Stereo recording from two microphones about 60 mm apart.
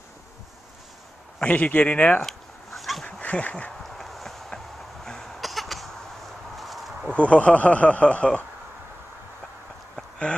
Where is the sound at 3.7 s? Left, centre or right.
Centre.